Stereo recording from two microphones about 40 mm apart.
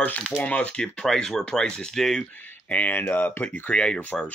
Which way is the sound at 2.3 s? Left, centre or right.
Left.